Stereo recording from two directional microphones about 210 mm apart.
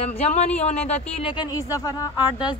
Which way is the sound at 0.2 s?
30° left (ahead or behind).